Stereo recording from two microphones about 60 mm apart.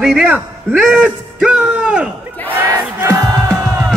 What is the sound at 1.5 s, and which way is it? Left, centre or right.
Speech, centre.